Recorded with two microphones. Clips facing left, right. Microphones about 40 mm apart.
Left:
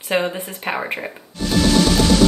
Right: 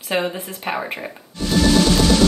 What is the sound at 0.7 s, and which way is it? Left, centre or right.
Speech, left.